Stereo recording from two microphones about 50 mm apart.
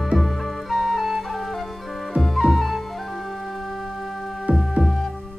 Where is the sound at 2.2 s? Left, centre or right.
Centre.